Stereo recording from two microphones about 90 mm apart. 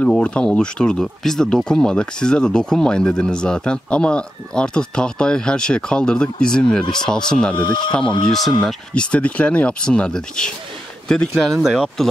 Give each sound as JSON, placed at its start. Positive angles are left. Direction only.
{"t": 0.0, "sound": "speech", "side_deg": 10}
{"t": 7.5, "sound": "speech", "side_deg": 55}
{"t": 8.9, "sound": "speech", "side_deg": 10}